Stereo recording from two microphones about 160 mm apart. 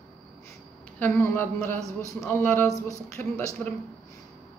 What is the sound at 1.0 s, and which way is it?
A woman's voice, 15° left (ahead or behind).